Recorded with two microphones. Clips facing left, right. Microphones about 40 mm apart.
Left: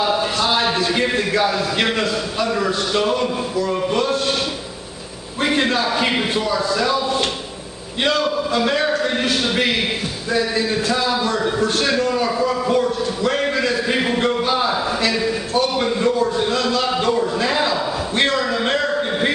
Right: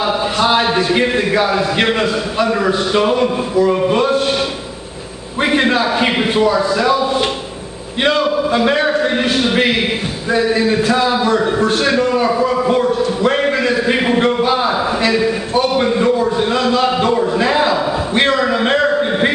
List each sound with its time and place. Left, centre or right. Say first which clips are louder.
0.0 s a man's voice: right 3 dB; centre
5.4 s a man's voice: right 4 dB; centre
10.3 s a sound: right 6 dB; centre